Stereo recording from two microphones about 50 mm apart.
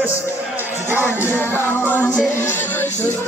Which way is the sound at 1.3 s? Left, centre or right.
Left.